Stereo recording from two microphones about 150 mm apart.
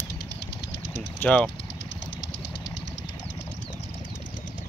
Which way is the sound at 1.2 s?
10° left (ahead or behind).